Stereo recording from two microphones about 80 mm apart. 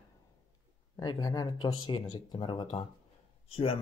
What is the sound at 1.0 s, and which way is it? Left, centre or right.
Speech, left.